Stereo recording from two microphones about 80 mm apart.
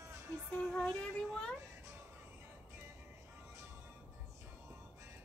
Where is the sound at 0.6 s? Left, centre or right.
Centre.